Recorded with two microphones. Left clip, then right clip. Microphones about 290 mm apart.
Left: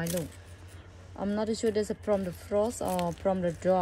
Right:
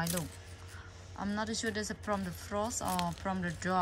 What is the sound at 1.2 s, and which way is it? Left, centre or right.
A woman's voice, centre.